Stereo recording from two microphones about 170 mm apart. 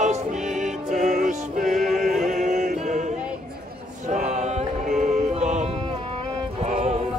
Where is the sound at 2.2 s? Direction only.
45° right (ahead or behind).